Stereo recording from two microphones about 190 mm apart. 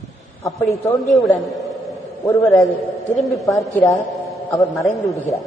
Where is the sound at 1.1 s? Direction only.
Centre (ahead or behind).